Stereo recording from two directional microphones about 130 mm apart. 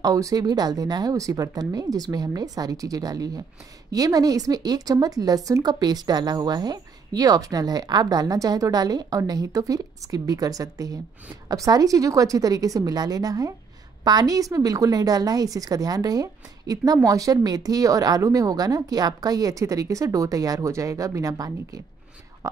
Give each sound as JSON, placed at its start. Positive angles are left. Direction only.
{"t": 0.0, "sound": "a woman's voice", "side_deg": -25}